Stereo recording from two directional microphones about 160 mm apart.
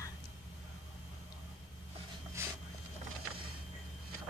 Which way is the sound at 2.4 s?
15° right (ahead or behind).